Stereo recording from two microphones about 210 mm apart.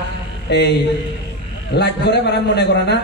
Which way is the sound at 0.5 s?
55° left (ahead or behind).